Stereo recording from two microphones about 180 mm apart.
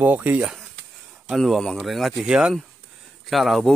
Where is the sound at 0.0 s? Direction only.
10° right (ahead or behind).